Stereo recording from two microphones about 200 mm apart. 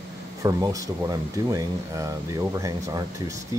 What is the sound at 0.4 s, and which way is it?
Speech, 15° right (ahead or behind).